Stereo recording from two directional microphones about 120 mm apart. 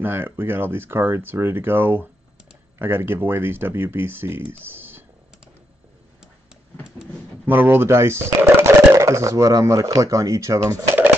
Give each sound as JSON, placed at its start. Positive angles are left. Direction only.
{"t": 0.0, "sound": "speech", "side_deg": -20}
{"t": 7.4, "sound": "speech", "side_deg": -15}